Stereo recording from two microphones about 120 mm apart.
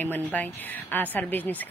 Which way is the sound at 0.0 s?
15° left (ahead or behind).